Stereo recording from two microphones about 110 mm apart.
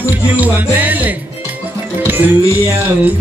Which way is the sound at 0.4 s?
15° right (ahead or behind).